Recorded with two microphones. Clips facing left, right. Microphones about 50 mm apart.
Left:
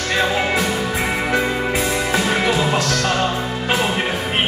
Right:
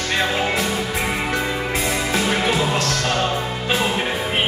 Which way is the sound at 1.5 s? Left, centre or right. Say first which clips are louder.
Left 2 dB; left.